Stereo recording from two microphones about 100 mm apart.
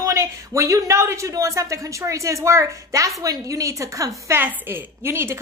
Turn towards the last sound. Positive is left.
turn(degrees=-25)  # may be behind; listen again after turning